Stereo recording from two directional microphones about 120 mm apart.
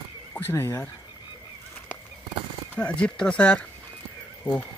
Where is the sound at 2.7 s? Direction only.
10° left (ahead or behind).